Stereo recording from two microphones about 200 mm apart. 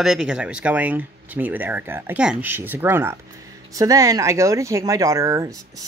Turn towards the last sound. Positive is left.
turn(degrees=-15)  # may be behind; listen again after turning